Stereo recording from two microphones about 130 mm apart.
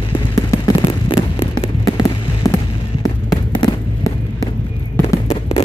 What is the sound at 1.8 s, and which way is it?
Fireworks, 25° left (ahead or behind).